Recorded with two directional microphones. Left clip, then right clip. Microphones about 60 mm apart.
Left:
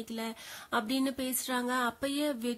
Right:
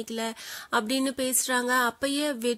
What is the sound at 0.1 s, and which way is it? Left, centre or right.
A woman's voice, right.